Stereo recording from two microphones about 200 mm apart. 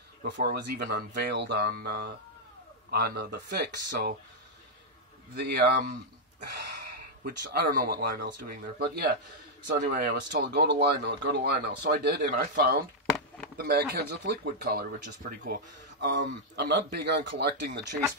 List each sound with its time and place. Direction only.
0.2 s speech: 55° right (ahead or behind)
5.3 s speech: 55° right (ahead or behind)